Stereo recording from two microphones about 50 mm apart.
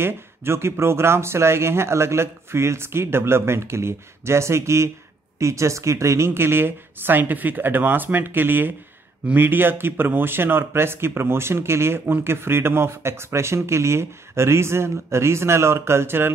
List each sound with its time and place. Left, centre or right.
0.0 s speech: right
5.4 s a woman's voice: right